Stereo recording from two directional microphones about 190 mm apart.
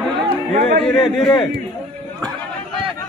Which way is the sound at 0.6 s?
45° right (ahead or behind).